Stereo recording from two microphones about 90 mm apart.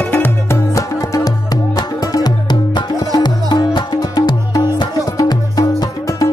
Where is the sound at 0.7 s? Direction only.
40° left (ahead or behind).